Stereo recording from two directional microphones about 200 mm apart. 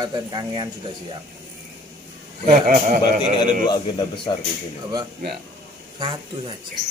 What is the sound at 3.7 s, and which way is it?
Speech, 25° left (ahead or behind).